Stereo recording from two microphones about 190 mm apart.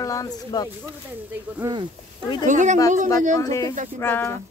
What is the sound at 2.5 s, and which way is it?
Speech, 40° right (ahead or behind).